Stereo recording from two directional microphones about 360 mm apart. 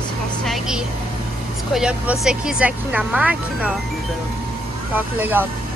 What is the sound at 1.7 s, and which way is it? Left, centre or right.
Speech, centre.